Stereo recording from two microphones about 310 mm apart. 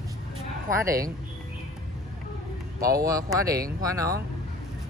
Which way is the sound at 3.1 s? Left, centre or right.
Centre.